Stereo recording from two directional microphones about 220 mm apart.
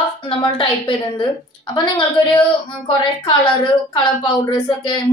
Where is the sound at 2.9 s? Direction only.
20° left (ahead or behind).